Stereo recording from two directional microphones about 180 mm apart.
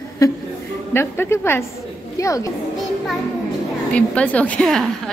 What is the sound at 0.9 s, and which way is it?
A woman's voice, 10° left (ahead or behind).